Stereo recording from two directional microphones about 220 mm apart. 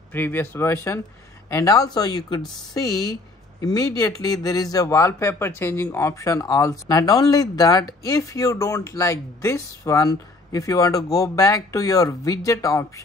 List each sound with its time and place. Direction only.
0.1 s speech: 10° left (ahead or behind)